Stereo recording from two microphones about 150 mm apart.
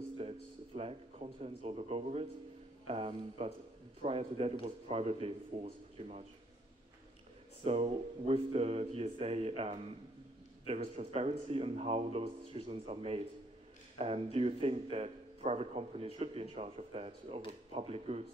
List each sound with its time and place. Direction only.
0.2 s speech: 40° right (ahead or behind)
7.6 s speech: 40° right (ahead or behind)